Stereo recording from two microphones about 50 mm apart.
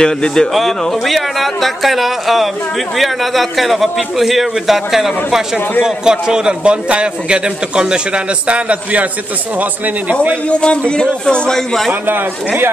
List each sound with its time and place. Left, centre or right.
0.0 s a man's voice: centre
0.5 s a man's voice: centre; by 9.0 s right
10.5 s a man's voice: centre